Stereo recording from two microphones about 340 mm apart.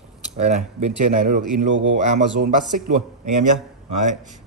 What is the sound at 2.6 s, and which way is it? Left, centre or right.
A man's voice, right.